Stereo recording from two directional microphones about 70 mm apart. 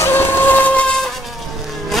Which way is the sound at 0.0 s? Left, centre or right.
Left.